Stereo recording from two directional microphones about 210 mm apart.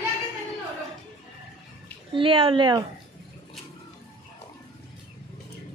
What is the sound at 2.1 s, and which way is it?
Speech, 25° right (ahead or behind).